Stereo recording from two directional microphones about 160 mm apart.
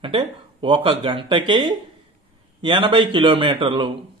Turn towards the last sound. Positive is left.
turn(degrees=-30)  # may be behind; listen again after turning